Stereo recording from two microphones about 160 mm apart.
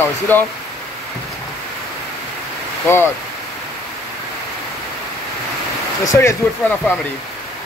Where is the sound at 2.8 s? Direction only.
15° left (ahead or behind).